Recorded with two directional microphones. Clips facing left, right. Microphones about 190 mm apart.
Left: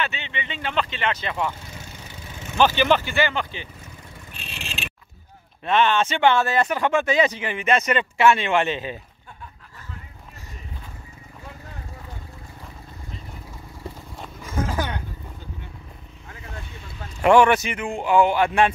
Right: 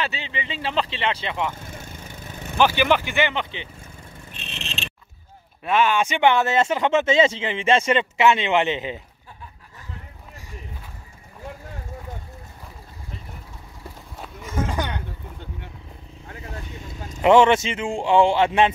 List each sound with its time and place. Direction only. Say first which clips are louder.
0.0 s speech: even; 30° right (ahead or behind)
1.6 s lawn mower: right 2 dB; 50° right (ahead or behind)
2.6 s speech: even; 10° right (ahead or behind)
4.3 s vehicle: right 1 dB; 5° left (ahead or behind)
5.6 s speech: even; 10° right (ahead or behind)
14.1 s a sound: right 1 dB; centre (ahead or behind)
17.2 s speech: right 1 dB; 25° right (ahead or behind)